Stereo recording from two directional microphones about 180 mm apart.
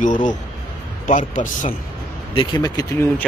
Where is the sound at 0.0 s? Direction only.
45° left (ahead or behind).